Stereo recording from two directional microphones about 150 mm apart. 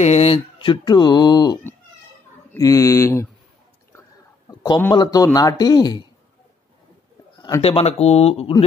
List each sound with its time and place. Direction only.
0.0 s a man's voice: 45° left (ahead or behind); by 3.3 s 20° left (ahead or behind)
4.5 s a man's voice: 25° left (ahead or behind)
7.6 s speech: 40° left (ahead or behind)